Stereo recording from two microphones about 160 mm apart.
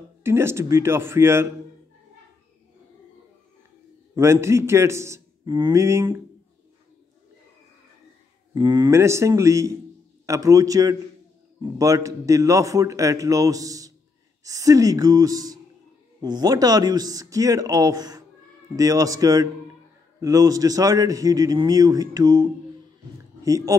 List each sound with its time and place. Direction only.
0.2 s a man's voice: 15° right (ahead or behind)
4.1 s a man's voice: 15° right (ahead or behind)
8.5 s a man's voice: 25° right (ahead or behind)